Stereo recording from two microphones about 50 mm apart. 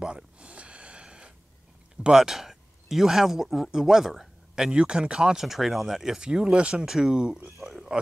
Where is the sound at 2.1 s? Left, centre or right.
Centre.